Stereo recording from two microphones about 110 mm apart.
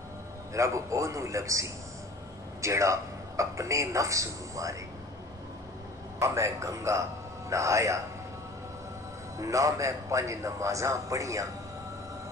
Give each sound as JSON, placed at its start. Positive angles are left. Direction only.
{"t": 0.5, "sound": "a man's voice", "side_deg": -30}
{"t": 6.1, "sound": "a man's voice", "side_deg": -25}
{"t": 9.4, "sound": "a man's voice", "side_deg": -30}